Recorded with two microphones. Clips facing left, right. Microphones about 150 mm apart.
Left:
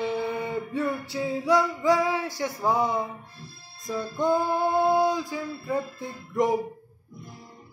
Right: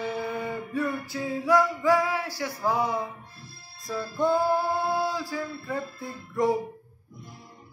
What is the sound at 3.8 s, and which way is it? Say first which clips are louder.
Music: even; 20° left (ahead or behind).